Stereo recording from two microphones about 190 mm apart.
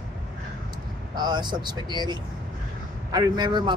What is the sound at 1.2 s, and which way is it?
A man's voice, 25° right (ahead or behind).